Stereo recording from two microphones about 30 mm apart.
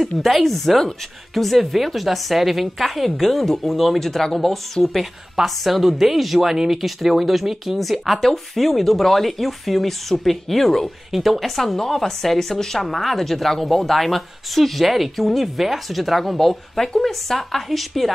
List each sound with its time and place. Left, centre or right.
0.2 s speech: centre
4.0 s speech: centre
4.8 s a woman's voice: left
5.6 s speech: centre
11.1 s speech: centre